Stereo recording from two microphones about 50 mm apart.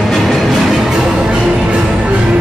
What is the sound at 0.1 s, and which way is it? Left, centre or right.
Music, centre.